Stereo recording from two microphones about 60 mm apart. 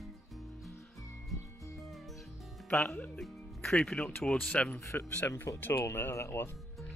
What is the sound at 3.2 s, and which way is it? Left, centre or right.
Music, centre.